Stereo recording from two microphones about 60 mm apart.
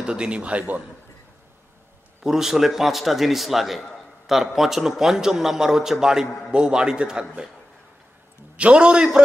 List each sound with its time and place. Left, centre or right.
0.0 s a man's voice: centre
2.2 s a man's voice: centre
8.5 s a man's voice: centre